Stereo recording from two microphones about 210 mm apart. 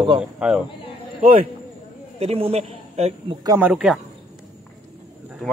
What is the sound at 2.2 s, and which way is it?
A man's voice, 30° right (ahead or behind).